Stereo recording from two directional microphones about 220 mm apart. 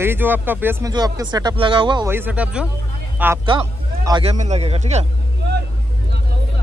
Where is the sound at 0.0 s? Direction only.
10° right (ahead or behind).